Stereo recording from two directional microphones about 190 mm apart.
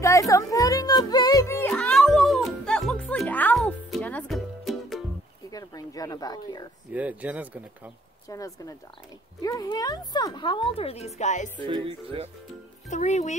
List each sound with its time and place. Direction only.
0.0 s music: 15° left (ahead or behind); by 5.0 s centre (ahead or behind)
5.5 s a sound: 20° left (ahead or behind)
6.9 s speech: 10° right (ahead or behind)
8.3 s a woman's voice: 15° left (ahead or behind); by 11.5 s 40° left (ahead or behind)
11.6 s speech: 25° right (ahead or behind)
12.9 s speech: 40° left (ahead or behind)